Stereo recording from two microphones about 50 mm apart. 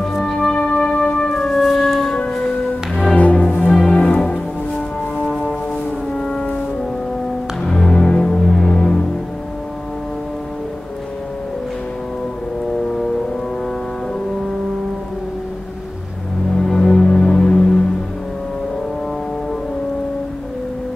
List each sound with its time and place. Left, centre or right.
0.0 s music: centre
1.3 s music: centre
2.1 s music: centre
3.2 s music: left
6.1 s brass instrument: centre
7.6 s music: centre
16.5 s music: centre